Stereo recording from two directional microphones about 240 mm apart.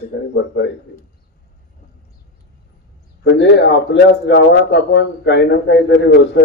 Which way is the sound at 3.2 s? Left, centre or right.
Left.